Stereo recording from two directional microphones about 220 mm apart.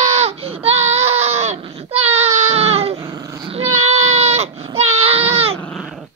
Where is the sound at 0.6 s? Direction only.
30° right (ahead or behind).